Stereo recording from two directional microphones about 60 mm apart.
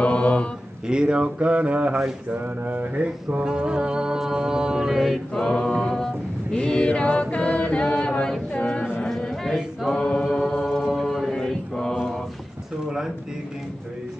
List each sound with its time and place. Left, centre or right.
0.0 s mantra: centre
0.8 s speech: centre
2.3 s music: right; by 5.2 s centre
5.3 s a capella: centre
8.5 s a sound: centre
9.0 s chatter: centre
9.9 s a capella: centre
10.3 s music: centre
10.9 s mantra: centre
12.8 s a sound: centre